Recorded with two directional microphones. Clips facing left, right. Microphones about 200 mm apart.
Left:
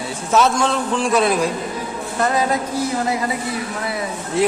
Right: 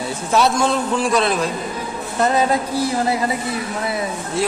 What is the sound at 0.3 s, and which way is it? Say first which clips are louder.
Speech: even; 5° right (ahead or behind).